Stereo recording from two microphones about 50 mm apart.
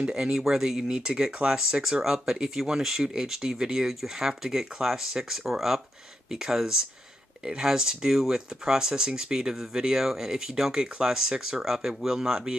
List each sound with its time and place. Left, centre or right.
0.0 s speech: centre